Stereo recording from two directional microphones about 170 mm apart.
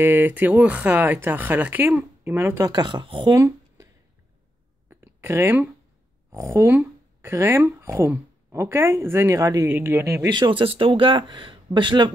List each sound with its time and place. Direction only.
0.0 s speech: 10° right (ahead or behind); by 3.3 s 30° right (ahead or behind)
3.3 s a sound: 20° right (ahead or behind)
6.3 s speech: 15° right (ahead or behind)